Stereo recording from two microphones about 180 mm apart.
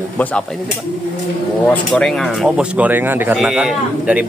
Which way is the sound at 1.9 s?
5° left (ahead or behind).